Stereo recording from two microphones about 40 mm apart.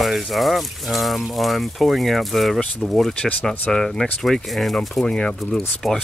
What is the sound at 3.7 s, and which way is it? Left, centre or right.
Speech, centre.